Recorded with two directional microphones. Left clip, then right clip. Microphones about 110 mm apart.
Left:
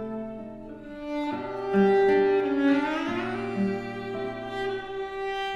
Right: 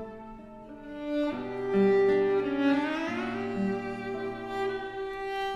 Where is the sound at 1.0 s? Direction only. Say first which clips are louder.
Right 1 dB; 40° right (ahead or behind).